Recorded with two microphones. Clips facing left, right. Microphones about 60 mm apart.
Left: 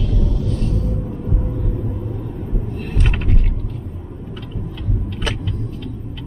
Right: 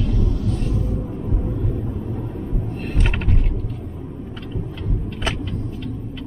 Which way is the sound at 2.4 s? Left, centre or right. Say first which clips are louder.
Even; centre.